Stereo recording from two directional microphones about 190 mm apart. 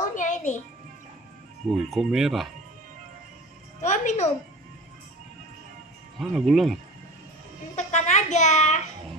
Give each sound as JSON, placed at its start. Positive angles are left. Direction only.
{"t": 0.0, "sound": "music", "side_deg": 40}
{"t": 1.7, "sound": "speech", "side_deg": 0}
{"t": 3.8, "sound": "a woman's voice", "side_deg": 40}
{"t": 6.1, "sound": "speech", "side_deg": 0}
{"t": 7.7, "sound": "a child's voice", "side_deg": 40}